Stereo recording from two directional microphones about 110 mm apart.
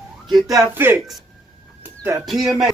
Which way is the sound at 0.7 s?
20° right (ahead or behind).